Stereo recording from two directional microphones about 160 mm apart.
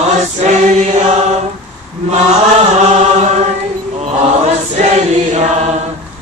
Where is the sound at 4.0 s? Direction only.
45° right (ahead or behind).